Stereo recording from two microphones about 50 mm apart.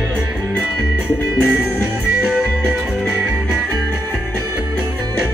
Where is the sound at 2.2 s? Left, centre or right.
Right.